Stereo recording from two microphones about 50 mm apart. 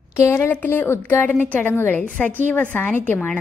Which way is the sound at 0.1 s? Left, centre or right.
Left.